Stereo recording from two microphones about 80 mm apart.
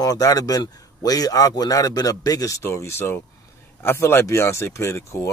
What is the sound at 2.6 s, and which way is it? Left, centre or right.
Speech, left.